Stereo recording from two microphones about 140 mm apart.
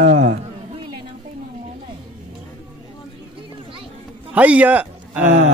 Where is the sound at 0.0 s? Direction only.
60° right (ahead or behind).